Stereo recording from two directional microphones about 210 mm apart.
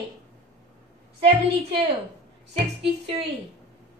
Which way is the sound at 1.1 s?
30° right (ahead or behind).